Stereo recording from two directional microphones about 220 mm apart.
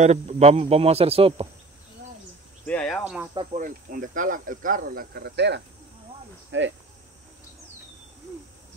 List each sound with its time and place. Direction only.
0.0 s speech: 30° right (ahead or behind)
2.6 s speech: 5° left (ahead or behind)
3.0 s speech: 5° right (ahead or behind)
3.5 s speech: 35° right (ahead or behind); by 6.7 s 55° right (ahead or behind)